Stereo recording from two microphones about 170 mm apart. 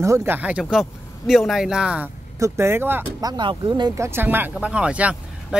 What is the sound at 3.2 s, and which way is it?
Speech, 25° right (ahead or behind).